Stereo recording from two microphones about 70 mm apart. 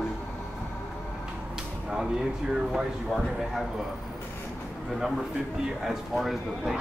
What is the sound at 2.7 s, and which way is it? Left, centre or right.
Speech, centre.